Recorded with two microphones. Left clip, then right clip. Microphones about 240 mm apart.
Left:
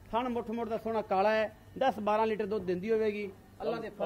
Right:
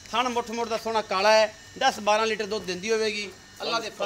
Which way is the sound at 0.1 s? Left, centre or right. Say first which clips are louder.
Right 7 dB; left.